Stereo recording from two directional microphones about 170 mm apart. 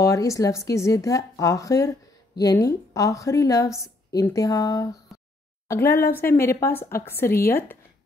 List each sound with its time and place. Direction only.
0.0 s speech: 15° left (ahead or behind)